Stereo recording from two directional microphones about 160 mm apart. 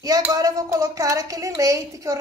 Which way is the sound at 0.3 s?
20° right (ahead or behind).